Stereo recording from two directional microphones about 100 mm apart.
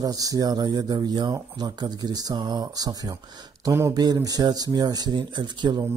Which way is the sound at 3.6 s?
30° right (ahead or behind).